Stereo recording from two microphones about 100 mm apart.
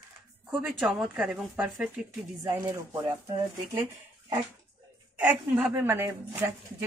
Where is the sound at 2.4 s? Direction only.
30° right (ahead or behind).